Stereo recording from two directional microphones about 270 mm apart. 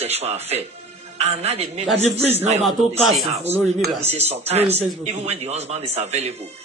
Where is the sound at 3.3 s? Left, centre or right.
Right.